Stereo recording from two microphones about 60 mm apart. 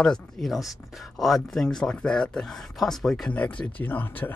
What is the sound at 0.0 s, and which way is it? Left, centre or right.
Speech, centre.